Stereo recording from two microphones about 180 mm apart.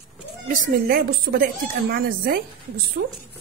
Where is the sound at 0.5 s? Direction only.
55° right (ahead or behind).